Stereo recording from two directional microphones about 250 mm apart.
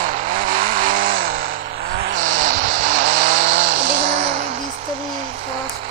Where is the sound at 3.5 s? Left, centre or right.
Right.